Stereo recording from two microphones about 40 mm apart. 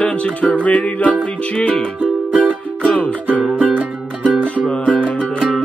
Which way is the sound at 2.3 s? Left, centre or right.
Right.